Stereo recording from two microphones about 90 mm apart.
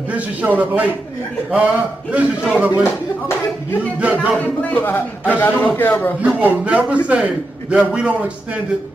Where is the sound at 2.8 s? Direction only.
25° left (ahead or behind).